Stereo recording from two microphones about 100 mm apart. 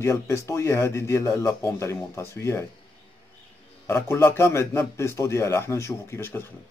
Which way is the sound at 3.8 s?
25° left (ahead or behind).